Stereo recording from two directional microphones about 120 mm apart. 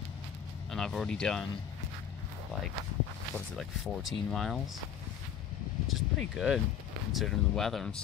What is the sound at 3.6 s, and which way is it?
Speech, centre (ahead or behind).